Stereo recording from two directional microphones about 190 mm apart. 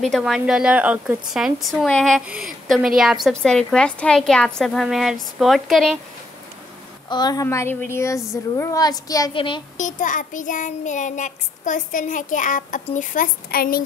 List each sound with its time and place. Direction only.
0.0 s a woman's voice: centre (ahead or behind)
7.1 s a woman's voice: 20° left (ahead or behind)
9.8 s child singing: 40° left (ahead or behind)